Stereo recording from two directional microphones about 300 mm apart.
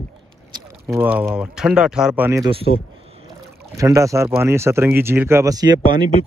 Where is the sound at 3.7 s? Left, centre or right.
Centre.